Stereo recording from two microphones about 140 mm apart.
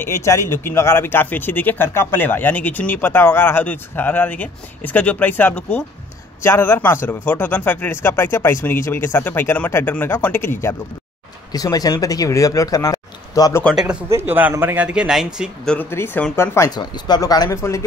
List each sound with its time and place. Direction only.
0.0 s speech: 20° left (ahead or behind)
14.0 s speech: 15° right (ahead or behind)
15.7 s speech: 15° left (ahead or behind)